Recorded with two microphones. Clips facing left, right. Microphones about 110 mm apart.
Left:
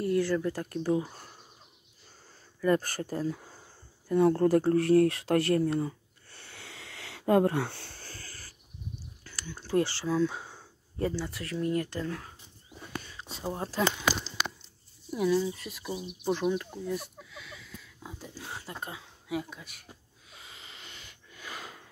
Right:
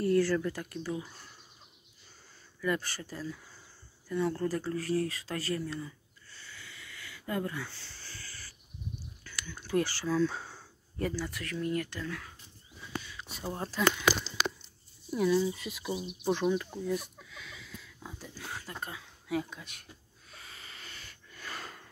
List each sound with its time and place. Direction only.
0.0 s speech: 20° left (ahead or behind)
0.5 s speech: 35° left (ahead or behind)
2.6 s speech: 45° left (ahead or behind)
4.1 s a sound: 45° left (ahead or behind)
9.2 s speech: 35° left (ahead or behind)
12.7 s a sound: 45° left (ahead or behind)
13.4 s speech: 15° left (ahead or behind)
15.1 s speech: 5° left (ahead or behind)
15.8 s speech: 15° right (ahead or behind)
16.3 s speech: 5° left (ahead or behind)
18.3 s speech: 25° left (ahead or behind)
19.3 s speech: 5° left (ahead or behind)
20.2 s a sound: 15° left (ahead or behind)